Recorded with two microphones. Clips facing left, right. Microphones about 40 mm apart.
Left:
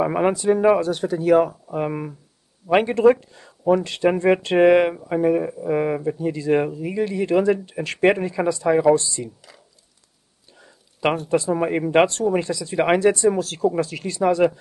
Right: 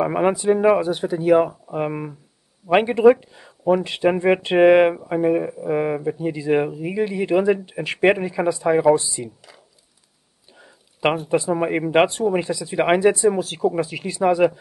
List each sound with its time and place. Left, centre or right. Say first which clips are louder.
0.0 s speech: even; centre
10.6 s speech: right 1 dB; centre